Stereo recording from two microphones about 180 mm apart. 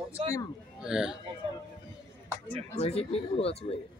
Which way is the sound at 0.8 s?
5° right (ahead or behind).